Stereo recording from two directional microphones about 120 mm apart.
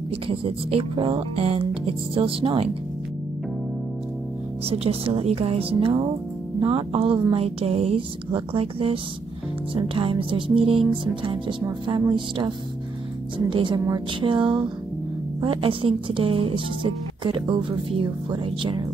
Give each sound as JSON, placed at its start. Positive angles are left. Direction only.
{"t": 0.3, "sound": "a woman's voice", "side_deg": -50}
{"t": 4.6, "sound": "a woman's voice", "side_deg": -55}